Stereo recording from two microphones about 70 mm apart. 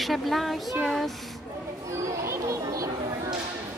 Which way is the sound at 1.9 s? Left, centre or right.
Right.